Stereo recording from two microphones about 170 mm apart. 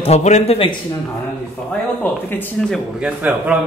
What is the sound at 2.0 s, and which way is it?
Speech, 10° left (ahead or behind).